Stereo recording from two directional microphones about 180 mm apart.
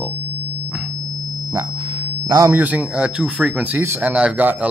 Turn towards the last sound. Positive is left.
turn(degrees=-10)  # may be behind; listen again after turning